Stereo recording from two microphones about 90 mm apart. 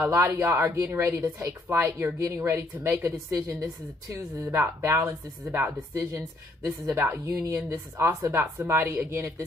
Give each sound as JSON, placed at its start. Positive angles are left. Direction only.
{"t": 0.0, "sound": "a woman's voice", "side_deg": -30}
{"t": 7.2, "sound": "speech", "side_deg": -30}